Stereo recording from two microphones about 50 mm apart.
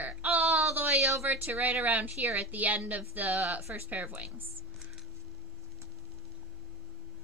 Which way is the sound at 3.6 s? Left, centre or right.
Right.